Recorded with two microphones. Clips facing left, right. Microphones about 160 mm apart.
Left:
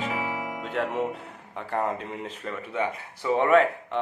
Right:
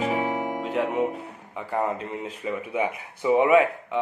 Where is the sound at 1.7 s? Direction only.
5° right (ahead or behind).